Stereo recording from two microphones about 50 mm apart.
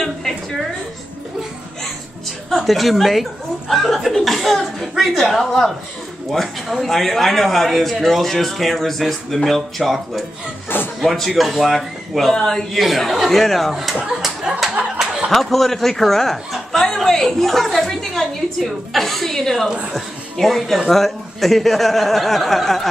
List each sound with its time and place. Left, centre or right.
2.5 s a man's voice: centre
15.3 s a woman's voice: centre